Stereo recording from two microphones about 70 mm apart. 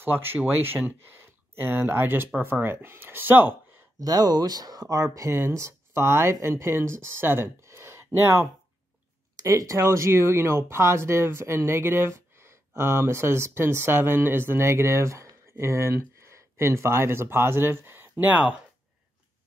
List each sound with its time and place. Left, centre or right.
0.0 s speech: right
4.0 s speech: right
9.4 s speech: right
9.8 s speech: right